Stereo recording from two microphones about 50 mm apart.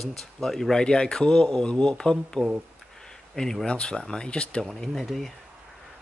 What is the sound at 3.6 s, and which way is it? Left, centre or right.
Speech, centre.